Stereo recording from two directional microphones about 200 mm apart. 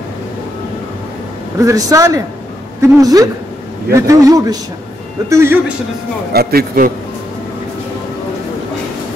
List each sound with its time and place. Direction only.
1.6 s speech: 15° right (ahead or behind)
6.3 s a man's voice: 50° right (ahead or behind)